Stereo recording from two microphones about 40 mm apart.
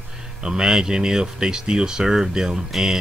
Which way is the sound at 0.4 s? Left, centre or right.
Centre.